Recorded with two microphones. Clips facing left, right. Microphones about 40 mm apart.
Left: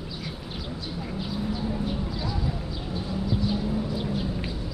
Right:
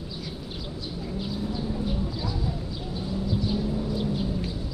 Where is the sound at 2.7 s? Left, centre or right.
Centre.